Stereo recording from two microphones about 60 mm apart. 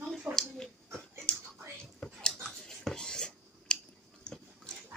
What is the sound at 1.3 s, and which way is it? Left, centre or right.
Whispering, centre.